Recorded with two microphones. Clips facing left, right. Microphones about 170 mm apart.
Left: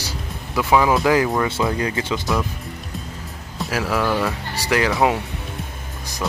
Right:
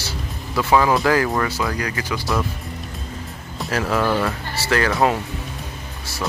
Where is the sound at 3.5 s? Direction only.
5° left (ahead or behind).